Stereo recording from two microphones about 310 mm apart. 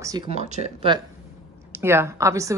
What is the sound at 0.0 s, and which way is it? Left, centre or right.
A woman's voice, centre.